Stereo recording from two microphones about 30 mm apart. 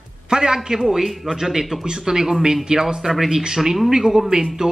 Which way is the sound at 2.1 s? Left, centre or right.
Right.